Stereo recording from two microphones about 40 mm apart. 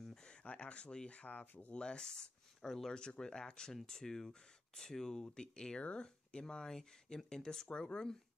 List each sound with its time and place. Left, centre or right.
0.1 s speech: left
1.7 s speech: left
2.9 s speech: left